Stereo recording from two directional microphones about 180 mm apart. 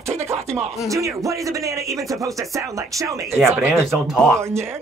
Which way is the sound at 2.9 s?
15° right (ahead or behind).